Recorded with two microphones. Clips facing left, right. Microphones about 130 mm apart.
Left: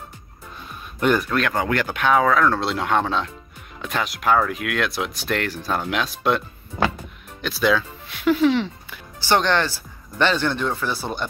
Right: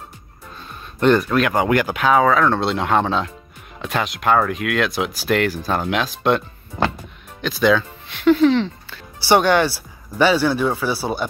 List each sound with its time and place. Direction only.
0.9 s speech: 5° left (ahead or behind)
1.5 s speech: 15° right (ahead or behind); by 9.0 s 5° left (ahead or behind)
9.2 s speech: 10° right (ahead or behind)